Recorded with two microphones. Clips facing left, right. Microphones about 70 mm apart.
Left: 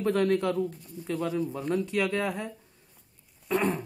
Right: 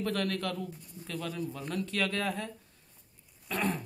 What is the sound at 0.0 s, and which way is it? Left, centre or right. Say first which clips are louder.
Speech: left 7 dB; left.